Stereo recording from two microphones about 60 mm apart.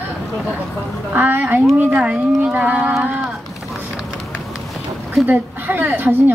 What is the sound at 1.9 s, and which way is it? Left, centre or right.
Speech, centre.